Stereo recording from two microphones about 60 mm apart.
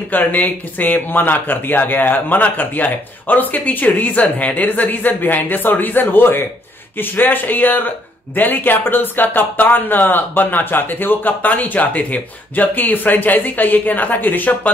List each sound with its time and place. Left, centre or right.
0.1 s speech: left